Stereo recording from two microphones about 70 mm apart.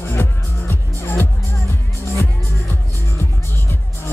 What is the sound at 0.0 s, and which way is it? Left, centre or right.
Music, left.